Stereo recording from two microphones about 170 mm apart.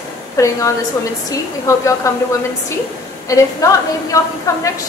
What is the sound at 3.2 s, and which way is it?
A woman's voice, 20° left (ahead or behind).